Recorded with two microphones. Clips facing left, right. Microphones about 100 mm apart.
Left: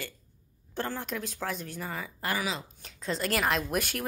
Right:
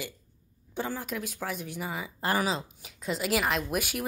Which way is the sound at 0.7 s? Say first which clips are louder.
Right 1 dB; 10° right (ahead or behind).